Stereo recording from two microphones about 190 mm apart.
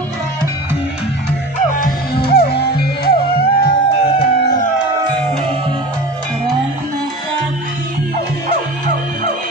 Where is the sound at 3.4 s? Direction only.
25° left (ahead or behind).